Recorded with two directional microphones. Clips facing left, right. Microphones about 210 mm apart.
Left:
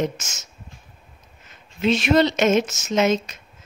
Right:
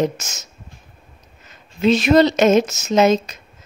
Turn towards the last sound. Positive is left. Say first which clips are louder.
# right 5 dB
turn(degrees=-35)  # may be behind; listen again after turning